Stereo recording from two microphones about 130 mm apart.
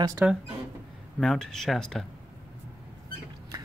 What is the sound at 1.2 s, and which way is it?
Speech, 5° left (ahead or behind).